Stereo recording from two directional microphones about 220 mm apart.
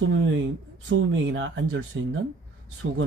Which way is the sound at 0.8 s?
60° right (ahead or behind).